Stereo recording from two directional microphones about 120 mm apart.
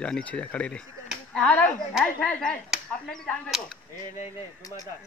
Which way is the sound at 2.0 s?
10° left (ahead or behind).